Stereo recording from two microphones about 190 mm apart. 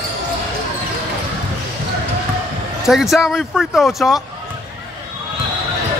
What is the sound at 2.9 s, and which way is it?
Speech, centre (ahead or behind).